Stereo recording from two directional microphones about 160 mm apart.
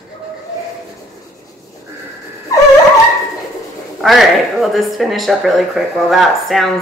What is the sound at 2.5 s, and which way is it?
Dog, 20° left (ahead or behind).